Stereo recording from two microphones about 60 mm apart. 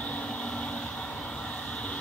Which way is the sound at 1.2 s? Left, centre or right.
Centre.